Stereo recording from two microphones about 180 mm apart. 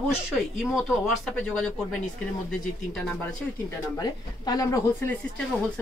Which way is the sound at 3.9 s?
20° left (ahead or behind).